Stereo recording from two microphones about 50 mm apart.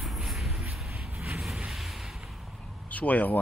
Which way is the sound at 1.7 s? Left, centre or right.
Centre.